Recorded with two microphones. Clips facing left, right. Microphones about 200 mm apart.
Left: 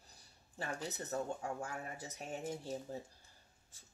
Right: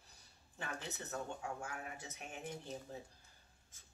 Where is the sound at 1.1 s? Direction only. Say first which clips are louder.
Left 4 dB; 35° left (ahead or behind).